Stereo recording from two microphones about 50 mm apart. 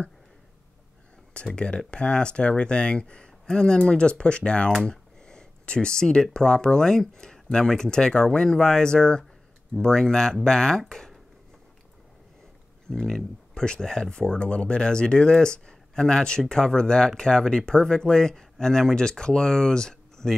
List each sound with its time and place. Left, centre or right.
1.3 s speech: centre
4.8 s a sound: centre
6.3 s speech: centre
12.8 s speech: centre